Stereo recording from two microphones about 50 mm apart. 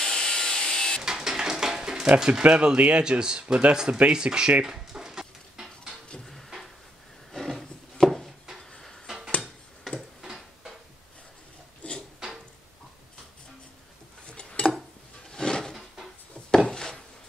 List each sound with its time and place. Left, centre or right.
0.0 s power windows: centre
1.0 s a sound: centre
2.1 s speech: centre
4.0 s bird: centre
7.3 s wood: centre
9.9 s tick-tock: centre
11.8 s a sound: left
12.2 s tick-tock: centre
14.2 s a sound: left
16.4 s wood: centre